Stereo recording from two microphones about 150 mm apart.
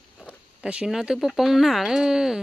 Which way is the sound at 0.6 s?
5° right (ahead or behind).